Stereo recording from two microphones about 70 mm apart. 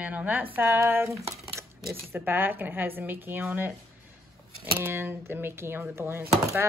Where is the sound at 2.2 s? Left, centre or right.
Right.